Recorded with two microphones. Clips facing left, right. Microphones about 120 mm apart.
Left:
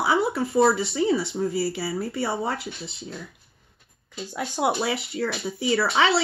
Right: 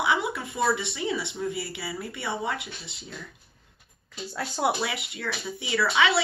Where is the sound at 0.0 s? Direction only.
35° left (ahead or behind).